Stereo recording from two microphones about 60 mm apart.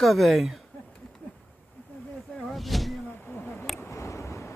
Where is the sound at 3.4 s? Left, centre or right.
Left.